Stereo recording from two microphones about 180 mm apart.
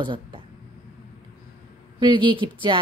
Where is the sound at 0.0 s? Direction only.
25° right (ahead or behind).